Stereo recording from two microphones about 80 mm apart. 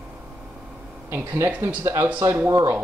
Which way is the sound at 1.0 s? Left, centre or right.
Right.